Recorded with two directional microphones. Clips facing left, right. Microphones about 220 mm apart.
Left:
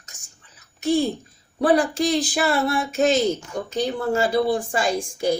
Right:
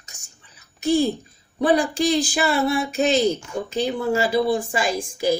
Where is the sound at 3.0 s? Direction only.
45° left (ahead or behind).